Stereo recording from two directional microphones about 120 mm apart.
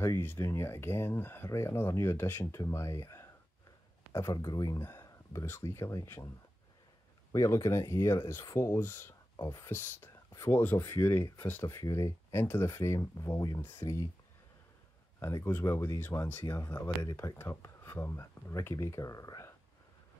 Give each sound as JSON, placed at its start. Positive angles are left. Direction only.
{"t": 0.0, "sound": "speech", "side_deg": 20}
{"t": 4.7, "sound": "speech", "side_deg": 20}
{"t": 7.3, "sound": "speech", "side_deg": 25}
{"t": 15.1, "sound": "speech", "side_deg": 25}